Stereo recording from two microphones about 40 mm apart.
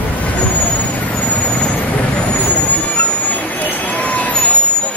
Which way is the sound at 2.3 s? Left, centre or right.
Left.